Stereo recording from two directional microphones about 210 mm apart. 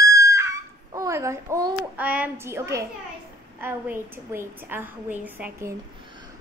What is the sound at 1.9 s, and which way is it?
A woman's voice, 5° right (ahead or behind).